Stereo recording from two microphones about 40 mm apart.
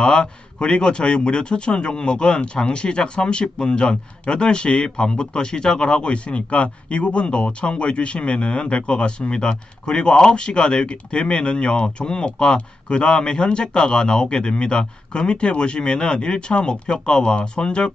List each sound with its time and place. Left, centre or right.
0.0 s speech: left